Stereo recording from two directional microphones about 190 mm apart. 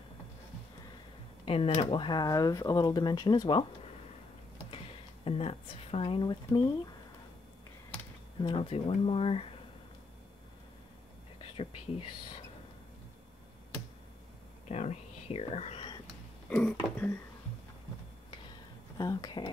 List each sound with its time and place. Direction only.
1.4 s speech: 30° left (ahead or behind)
4.6 s speech: 30° left (ahead or behind)
8.4 s speech: 25° left (ahead or behind)
14.7 s speech: 35° left (ahead or behind)
16.4 s speech: 10° left (ahead or behind)
18.9 s speech: 20° left (ahead or behind)